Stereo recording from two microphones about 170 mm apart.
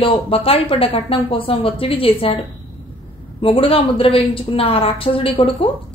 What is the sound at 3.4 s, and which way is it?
A woman's voice, 35° left (ahead or behind).